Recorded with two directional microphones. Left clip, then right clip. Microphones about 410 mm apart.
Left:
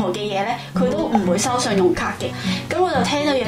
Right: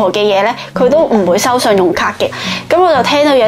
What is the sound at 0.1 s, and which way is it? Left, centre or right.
A woman's voice, right.